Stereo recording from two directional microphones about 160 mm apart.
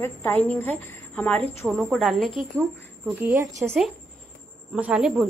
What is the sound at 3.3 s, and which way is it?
Speech, 20° right (ahead or behind).